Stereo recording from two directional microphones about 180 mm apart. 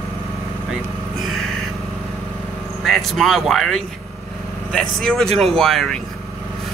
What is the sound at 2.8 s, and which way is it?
A man's voice, centre (ahead or behind).